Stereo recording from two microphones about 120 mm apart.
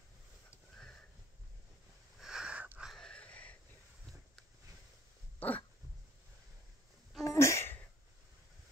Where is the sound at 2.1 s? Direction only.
5° right (ahead or behind).